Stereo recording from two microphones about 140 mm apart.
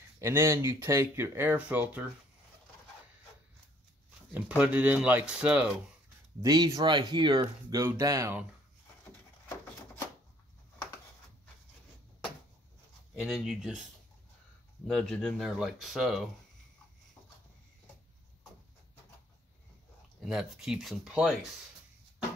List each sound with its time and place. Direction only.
0.2 s speech: 20° right (ahead or behind)
4.3 s speech: 10° right (ahead or behind)
6.4 s speech: 30° right (ahead or behind)
7.7 s speech: 20° right (ahead or behind)
13.1 s speech: centre (ahead or behind)
14.9 s speech: 5° left (ahead or behind)
20.2 s speech: 5° right (ahead or behind)